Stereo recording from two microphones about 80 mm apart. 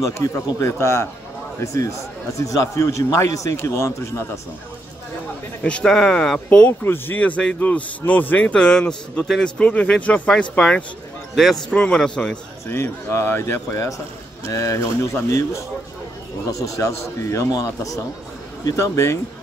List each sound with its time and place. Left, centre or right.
0.0 s a man's voice: left
5.6 s a man's voice: centre
6.8 s a man's voice: left
11.3 s speech: centre
11.7 s a man's voice: centre
12.6 s a man's voice: left